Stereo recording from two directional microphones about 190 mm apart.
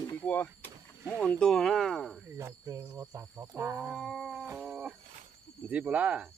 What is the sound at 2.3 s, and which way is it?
Speech, 15° right (ahead or behind).